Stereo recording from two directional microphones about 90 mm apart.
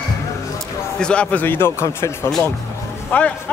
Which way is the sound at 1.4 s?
25° left (ahead or behind).